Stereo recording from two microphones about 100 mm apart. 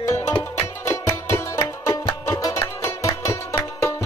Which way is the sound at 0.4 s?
25° left (ahead or behind).